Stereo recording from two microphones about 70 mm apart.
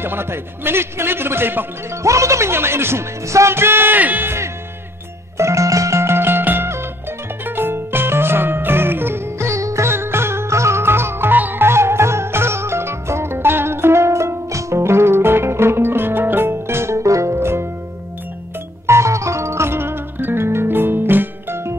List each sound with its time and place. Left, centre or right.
0.0 s speech: right
2.0 s speech: right
5.4 s music: right
18.9 s music: right